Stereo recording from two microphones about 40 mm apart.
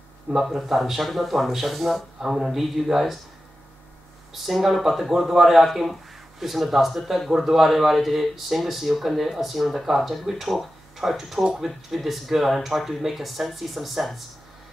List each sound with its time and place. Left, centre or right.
0.3 s a man's voice: centre
2.1 s speech: centre
4.3 s a man's voice: centre
11.4 s speech: centre
11.9 s a man's voice: centre